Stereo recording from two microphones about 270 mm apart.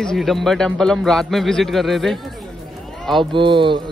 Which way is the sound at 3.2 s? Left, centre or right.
Centre.